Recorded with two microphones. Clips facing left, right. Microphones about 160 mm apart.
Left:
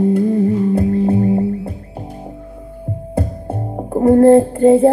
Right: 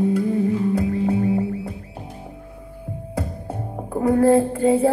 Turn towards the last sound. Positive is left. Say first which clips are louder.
# left 7 dB
turn(degrees=30)  # may be behind; listen again after turning